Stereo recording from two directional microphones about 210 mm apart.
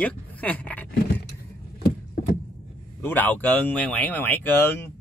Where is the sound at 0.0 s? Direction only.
5° left (ahead or behind).